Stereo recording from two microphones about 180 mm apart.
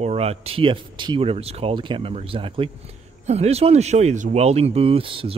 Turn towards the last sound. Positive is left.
turn(degrees=-30)  # may be behind; listen again after turning